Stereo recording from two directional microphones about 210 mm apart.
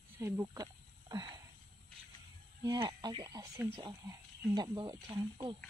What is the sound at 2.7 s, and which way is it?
Speech, 20° right (ahead or behind).